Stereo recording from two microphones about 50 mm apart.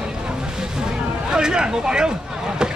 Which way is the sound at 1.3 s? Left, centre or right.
Centre.